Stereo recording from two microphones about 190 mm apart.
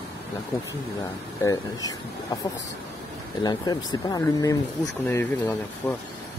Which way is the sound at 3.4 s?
20° left (ahead or behind).